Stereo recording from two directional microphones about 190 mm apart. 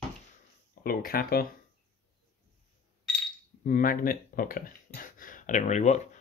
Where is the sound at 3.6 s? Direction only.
45° left (ahead or behind).